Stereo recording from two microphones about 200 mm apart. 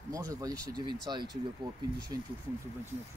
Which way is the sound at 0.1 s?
15° right (ahead or behind).